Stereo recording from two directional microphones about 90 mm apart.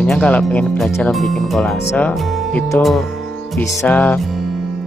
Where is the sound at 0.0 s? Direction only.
10° left (ahead or behind).